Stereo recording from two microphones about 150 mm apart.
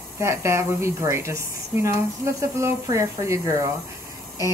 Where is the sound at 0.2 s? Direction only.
20° right (ahead or behind).